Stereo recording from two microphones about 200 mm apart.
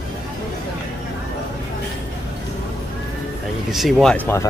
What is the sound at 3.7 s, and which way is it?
Speech, centre (ahead or behind).